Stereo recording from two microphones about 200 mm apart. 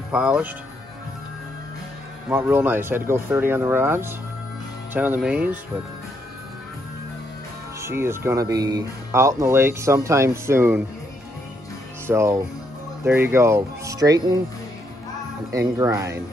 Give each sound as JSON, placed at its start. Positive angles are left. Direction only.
{"t": 0.1, "sound": "speech", "side_deg": -5}
{"t": 2.2, "sound": "speech", "side_deg": -10}
{"t": 7.8, "sound": "speech", "side_deg": -10}
{"t": 12.1, "sound": "speech", "side_deg": -15}
{"t": 15.8, "sound": "speech", "side_deg": -15}